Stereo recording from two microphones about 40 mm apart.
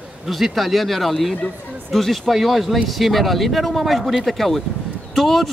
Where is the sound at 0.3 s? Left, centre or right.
Centre.